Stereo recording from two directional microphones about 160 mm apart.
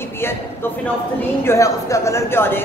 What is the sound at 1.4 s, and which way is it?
A woman's voice, 20° left (ahead or behind).